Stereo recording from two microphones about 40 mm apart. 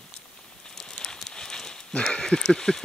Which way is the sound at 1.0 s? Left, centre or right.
Centre.